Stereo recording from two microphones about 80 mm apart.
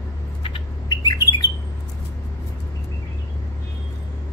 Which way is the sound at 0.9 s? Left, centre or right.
Left.